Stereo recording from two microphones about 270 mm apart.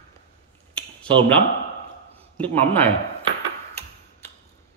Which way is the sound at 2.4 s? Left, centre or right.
Centre.